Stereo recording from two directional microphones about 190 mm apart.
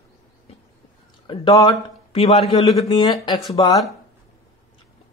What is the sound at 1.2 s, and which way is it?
Speech, 25° left (ahead or behind).